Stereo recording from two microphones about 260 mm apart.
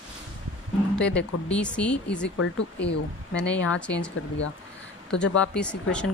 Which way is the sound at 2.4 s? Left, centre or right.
Left.